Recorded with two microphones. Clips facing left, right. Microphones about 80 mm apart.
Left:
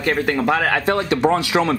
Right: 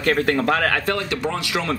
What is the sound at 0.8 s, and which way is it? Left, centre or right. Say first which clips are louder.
Speech: left 6 dB; left.